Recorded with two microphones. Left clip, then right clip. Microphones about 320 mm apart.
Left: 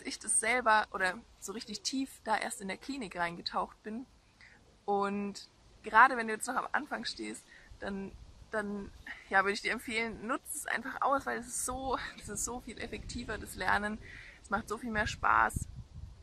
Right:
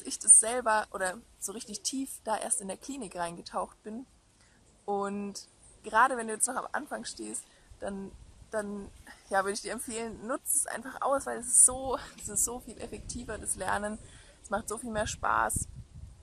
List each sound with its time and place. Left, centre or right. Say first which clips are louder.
0.4 s speech: left 6 dB; centre
8.5 s speech: right 2 dB; centre